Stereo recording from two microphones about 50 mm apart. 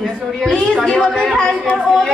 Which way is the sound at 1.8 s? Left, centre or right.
Centre.